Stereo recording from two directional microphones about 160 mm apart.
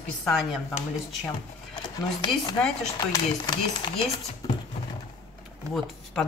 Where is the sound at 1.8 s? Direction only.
25° left (ahead or behind).